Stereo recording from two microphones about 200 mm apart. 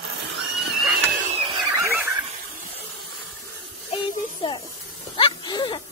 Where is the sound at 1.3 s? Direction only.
30° right (ahead or behind).